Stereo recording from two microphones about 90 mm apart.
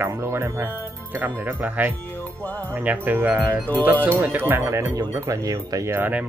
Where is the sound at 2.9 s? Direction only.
20° right (ahead or behind).